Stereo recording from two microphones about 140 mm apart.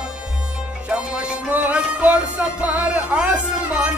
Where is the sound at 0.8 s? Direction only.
10° right (ahead or behind).